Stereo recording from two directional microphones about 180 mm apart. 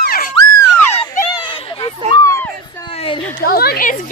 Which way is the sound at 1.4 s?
30° left (ahead or behind).